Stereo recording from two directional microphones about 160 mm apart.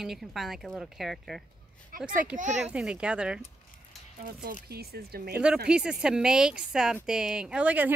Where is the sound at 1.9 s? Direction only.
60° right (ahead or behind).